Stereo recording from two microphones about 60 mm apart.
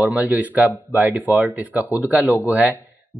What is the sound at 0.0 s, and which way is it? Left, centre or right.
Speech, right.